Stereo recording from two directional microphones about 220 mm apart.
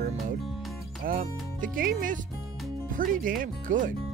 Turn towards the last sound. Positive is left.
turn(degrees=-35)  # may be behind; listen again after turning